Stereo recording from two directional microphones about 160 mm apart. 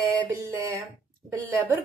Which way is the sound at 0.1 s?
20° right (ahead or behind).